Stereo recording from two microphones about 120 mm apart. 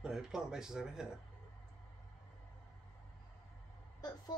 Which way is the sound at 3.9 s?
35° left (ahead or behind).